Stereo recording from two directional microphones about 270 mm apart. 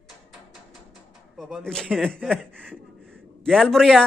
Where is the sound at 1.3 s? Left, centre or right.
Centre.